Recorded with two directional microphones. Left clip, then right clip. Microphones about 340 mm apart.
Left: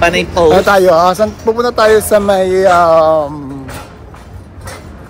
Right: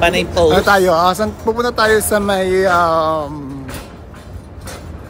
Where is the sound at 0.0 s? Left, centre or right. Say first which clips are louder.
Left 3 dB; centre.